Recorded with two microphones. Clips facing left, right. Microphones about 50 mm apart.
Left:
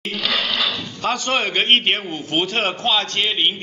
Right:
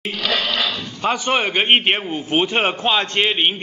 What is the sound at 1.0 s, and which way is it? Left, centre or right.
A man's voice, centre.